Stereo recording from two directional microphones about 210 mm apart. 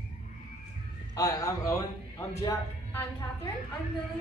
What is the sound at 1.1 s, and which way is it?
A man's voice, 15° left (ahead or behind).